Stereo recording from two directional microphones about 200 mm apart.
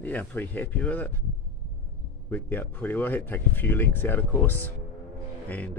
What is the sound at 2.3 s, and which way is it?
Speech, 10° left (ahead or behind).